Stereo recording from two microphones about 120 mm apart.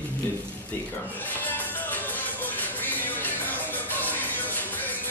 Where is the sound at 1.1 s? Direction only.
15° left (ahead or behind).